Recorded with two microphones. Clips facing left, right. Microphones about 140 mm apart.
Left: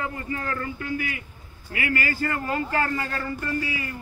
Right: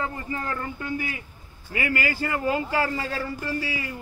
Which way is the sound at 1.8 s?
15° right (ahead or behind).